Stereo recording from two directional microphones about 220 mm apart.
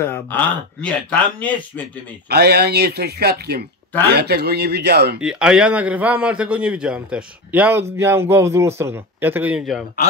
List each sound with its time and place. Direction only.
0.0 s speech: 10° left (ahead or behind)
2.2 s speech: 45° right (ahead or behind)
5.2 s a man's voice: 5° right (ahead or behind)